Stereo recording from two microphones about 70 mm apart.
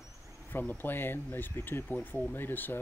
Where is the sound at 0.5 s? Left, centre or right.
Left.